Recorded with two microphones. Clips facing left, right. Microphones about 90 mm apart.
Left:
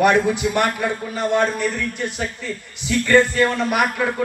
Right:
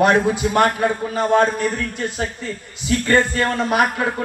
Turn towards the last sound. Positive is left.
turn(degrees=-25)  # may be behind; listen again after turning